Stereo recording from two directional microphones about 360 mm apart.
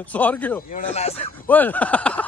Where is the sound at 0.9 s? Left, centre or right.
Centre.